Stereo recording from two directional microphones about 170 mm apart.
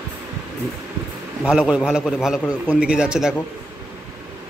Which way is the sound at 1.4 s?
5° right (ahead or behind).